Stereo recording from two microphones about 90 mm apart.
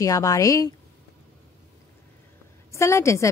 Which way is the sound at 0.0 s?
40° left (ahead or behind).